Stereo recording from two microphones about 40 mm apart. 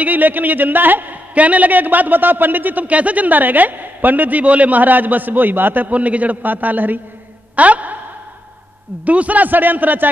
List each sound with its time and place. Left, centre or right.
0.0 s a man's voice: right
1.3 s a man's voice: right
5.9 s a man's voice: right
7.5 s a woman's voice: right
9.0 s a man's voice: right